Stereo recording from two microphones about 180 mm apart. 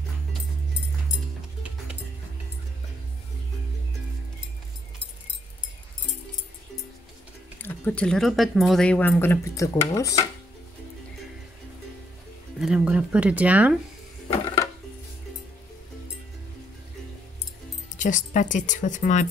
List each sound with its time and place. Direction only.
7.6 s speech: 10° left (ahead or behind)
9.9 s dishes: 20° left (ahead or behind)
12.5 s speech: 5° right (ahead or behind)
17.9 s speech: 45° left (ahead or behind)